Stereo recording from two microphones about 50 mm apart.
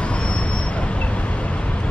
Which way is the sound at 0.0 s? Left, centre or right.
Left.